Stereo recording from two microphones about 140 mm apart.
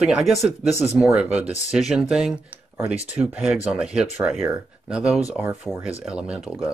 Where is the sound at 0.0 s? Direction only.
5° right (ahead or behind).